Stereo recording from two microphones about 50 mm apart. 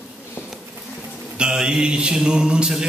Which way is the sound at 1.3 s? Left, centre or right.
Centre.